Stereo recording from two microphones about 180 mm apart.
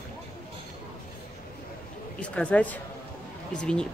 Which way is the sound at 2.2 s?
5° left (ahead or behind).